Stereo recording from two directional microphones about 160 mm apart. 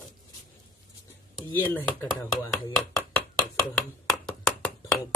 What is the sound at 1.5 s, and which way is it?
Speech, 10° left (ahead or behind).